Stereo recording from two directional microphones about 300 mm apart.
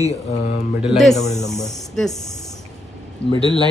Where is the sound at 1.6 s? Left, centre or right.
Centre.